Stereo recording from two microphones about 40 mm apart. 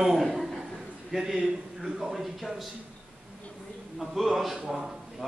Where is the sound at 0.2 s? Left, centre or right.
Centre.